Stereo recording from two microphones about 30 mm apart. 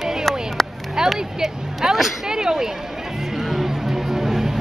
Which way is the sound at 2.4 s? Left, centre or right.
Right.